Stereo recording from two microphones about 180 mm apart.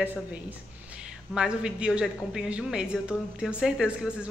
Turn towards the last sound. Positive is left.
turn(degrees=-5)  # may be behind; listen again after turning